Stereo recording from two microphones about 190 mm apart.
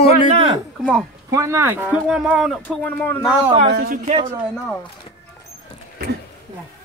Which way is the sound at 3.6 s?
55° right (ahead or behind).